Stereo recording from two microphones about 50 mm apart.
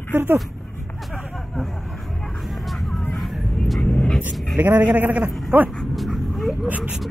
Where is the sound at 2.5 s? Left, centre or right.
Centre.